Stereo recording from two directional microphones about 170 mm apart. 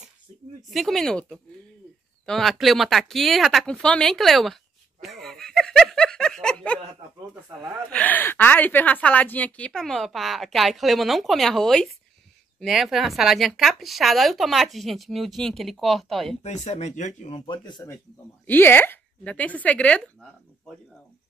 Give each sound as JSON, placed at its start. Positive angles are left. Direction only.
{"t": 0.7, "sound": "a woman's voice", "side_deg": 0}
{"t": 16.4, "sound": "speech", "side_deg": 40}
{"t": 17.5, "sound": "speech", "side_deg": 25}
{"t": 18.5, "sound": "a woman's voice", "side_deg": 10}